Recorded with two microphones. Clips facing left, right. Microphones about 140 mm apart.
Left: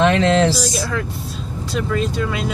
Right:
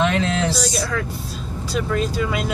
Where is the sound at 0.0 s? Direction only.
90° left.